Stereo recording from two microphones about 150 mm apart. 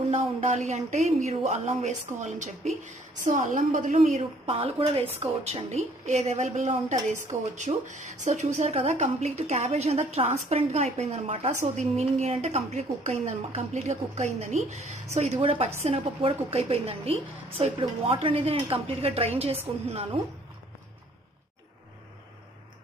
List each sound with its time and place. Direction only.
0.1 s a woman's voice: 50° right (ahead or behind)
4.2 s a woman's voice: 40° right (ahead or behind)